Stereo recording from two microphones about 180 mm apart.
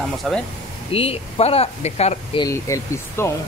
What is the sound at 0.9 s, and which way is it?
Speech, 30° left (ahead or behind).